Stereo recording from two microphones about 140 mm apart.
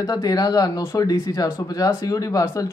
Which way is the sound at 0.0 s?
30° left (ahead or behind).